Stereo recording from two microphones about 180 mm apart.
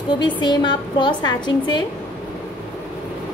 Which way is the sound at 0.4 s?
25° left (ahead or behind).